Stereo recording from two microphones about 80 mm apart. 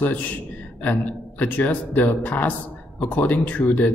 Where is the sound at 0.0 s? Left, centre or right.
Left.